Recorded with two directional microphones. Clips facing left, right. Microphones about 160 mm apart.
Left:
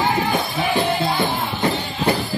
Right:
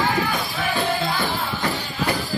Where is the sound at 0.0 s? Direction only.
25° left (ahead or behind).